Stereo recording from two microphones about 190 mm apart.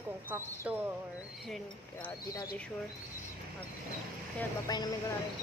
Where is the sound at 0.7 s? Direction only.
10° right (ahead or behind).